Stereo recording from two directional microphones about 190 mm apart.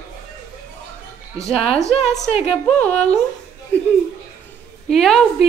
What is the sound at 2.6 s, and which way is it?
Speech, 5° left (ahead or behind).